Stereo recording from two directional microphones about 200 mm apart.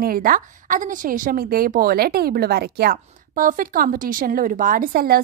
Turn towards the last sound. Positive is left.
turn(degrees=-50)  # may be behind; listen again after turning